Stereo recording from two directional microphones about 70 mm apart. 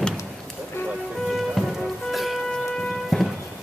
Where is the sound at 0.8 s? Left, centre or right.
Left.